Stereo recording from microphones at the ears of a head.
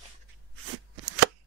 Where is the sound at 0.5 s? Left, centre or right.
Right.